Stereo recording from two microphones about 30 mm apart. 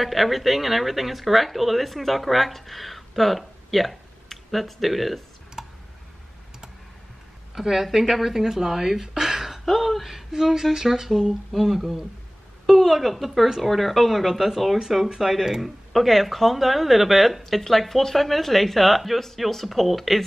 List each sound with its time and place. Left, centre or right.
0.0 s speech: centre
5.6 s tick: centre
7.5 s speech: centre
9.7 s speech: centre
15.9 s speech: centre